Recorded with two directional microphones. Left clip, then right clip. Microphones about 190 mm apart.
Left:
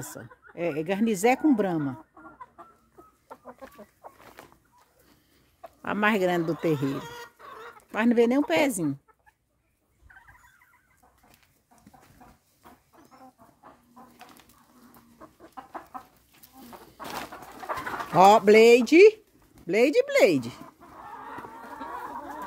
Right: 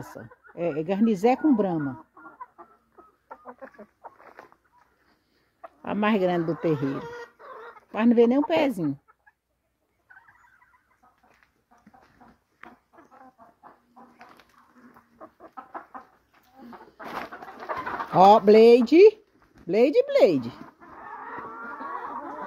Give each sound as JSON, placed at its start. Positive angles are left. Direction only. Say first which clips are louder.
{"t": 0.2, "sound": "speech", "louder": "right 2 dB", "side_deg": -5}
{"t": 2.0, "sound": "chicken", "louder": "right 2 dB", "side_deg": 50}
{"t": 4.2, "sound": "chicken", "louder": "right 1 dB", "side_deg": -5}
{"t": 5.8, "sound": "speech", "louder": "even", "side_deg": 0}
{"t": 6.8, "sound": "chicken", "louder": "right 1 dB", "side_deg": 55}
{"t": 7.9, "sound": "speech", "louder": "right 2 dB", "side_deg": 0}
{"t": 15.5, "sound": "chicken", "louder": "even", "side_deg": 0}
{"t": 16.9, "sound": "bird", "louder": "right 1 dB", "side_deg": 0}